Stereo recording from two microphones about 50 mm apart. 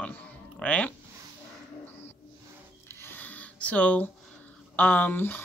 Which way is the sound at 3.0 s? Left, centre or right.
Left.